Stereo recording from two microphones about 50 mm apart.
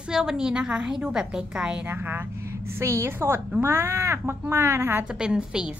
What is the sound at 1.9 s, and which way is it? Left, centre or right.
Speech, right.